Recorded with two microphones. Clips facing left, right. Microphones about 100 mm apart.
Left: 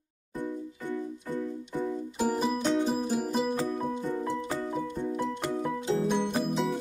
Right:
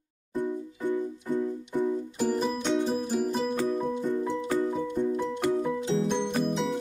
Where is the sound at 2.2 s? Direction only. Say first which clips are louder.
Left 1 dB; 5° left (ahead or behind).